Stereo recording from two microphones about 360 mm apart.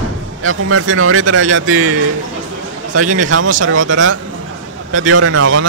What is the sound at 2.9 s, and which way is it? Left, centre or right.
Speech, right.